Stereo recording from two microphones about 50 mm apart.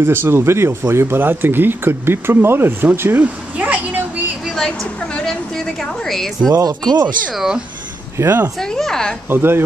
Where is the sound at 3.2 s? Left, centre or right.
Right.